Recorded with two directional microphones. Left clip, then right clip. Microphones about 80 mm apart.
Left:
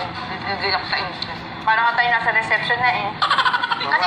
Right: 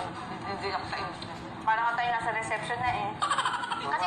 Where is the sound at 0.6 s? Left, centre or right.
Centre.